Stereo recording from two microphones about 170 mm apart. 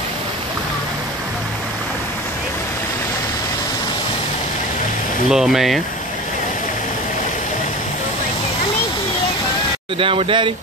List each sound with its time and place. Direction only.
5.3 s speech: centre (ahead or behind)
9.9 s speech: 30° right (ahead or behind)